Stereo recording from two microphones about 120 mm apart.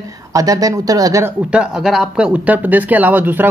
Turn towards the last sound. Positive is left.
turn(degrees=-15)  # may be behind; listen again after turning